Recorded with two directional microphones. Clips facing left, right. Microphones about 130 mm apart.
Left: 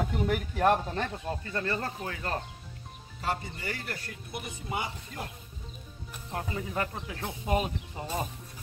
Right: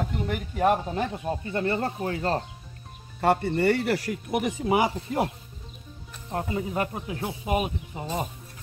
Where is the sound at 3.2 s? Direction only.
65° right (ahead or behind); by 5.3 s 90° right.